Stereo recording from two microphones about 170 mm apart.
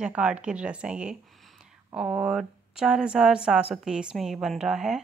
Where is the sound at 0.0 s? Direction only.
5° right (ahead or behind).